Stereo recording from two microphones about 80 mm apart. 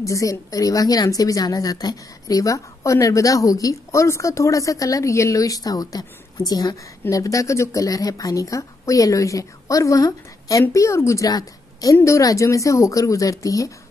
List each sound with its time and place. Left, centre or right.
0.0 s a woman's voice: left
11.2 s a woman's voice: left